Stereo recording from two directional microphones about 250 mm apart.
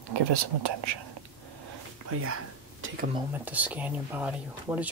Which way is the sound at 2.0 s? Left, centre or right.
Right.